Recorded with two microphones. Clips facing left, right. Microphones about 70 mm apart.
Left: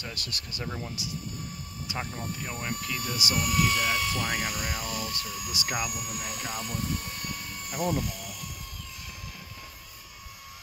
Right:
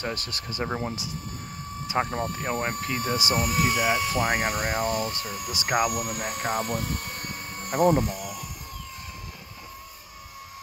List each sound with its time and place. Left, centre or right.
0.0 s speech: right
1.9 s speech: right
8.2 s a sound: right